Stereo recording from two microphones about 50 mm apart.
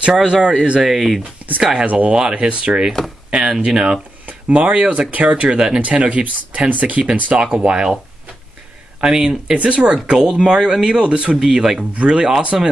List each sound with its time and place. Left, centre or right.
0.0 s speech: centre
1.6 s speech: centre
1.9 s speech: right
2.1 s speech: centre
4.3 s speech: right
9.0 s speech: centre
11.9 s speech: right
12.5 s speech: centre